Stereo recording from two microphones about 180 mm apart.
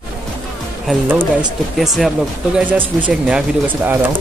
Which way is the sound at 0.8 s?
10° right (ahead or behind).